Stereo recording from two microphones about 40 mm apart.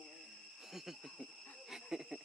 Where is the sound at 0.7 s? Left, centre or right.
Centre.